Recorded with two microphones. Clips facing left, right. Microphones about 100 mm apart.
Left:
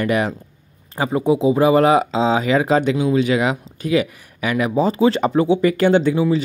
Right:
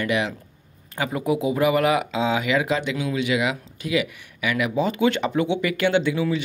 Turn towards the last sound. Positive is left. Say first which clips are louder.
# left 6 dB
turn(degrees=40)  # may be behind; listen again after turning